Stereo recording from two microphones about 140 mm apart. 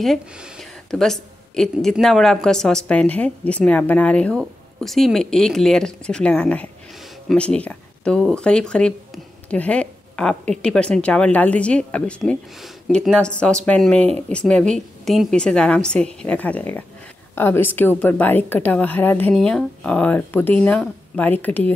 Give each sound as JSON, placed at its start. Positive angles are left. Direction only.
{"t": 0.0, "sound": "a woman's voice", "side_deg": 0}